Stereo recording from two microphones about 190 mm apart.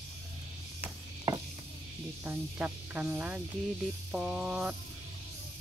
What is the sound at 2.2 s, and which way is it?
Speech, 10° right (ahead or behind).